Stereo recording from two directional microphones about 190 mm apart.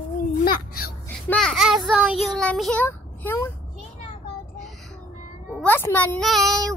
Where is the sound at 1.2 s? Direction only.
5° left (ahead or behind).